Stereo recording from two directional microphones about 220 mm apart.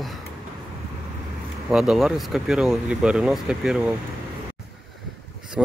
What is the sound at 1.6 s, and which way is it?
Speech, centre (ahead or behind).